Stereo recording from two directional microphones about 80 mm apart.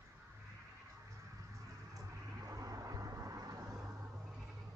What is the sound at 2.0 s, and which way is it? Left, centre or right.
Vehicle, right.